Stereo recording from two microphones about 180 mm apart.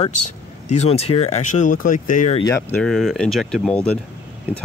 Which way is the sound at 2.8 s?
Centre (ahead or behind).